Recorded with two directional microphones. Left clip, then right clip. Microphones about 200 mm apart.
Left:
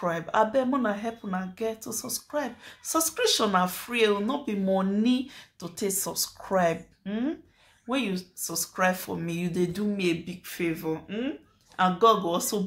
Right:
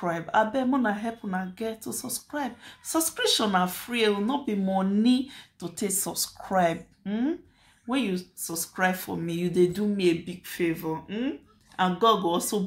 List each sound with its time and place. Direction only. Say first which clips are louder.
0.0 s speech: even; 5° left (ahead or behind)